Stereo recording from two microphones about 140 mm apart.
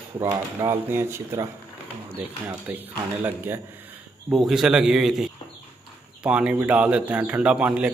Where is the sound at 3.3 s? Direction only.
15° right (ahead or behind).